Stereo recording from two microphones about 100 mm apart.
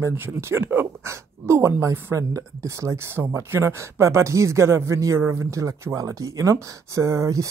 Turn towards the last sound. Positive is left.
turn(degrees=-30)  # may be behind; listen again after turning